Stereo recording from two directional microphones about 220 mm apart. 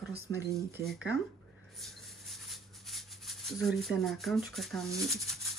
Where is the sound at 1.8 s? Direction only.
Centre (ahead or behind).